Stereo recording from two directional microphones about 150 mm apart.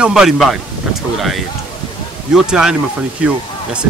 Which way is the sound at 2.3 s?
5° right (ahead or behind).